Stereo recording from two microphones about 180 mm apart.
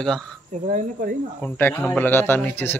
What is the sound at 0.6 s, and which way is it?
Speech, 45° right (ahead or behind).